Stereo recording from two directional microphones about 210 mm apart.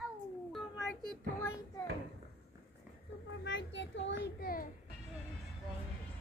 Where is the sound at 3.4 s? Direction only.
60° left (ahead or behind).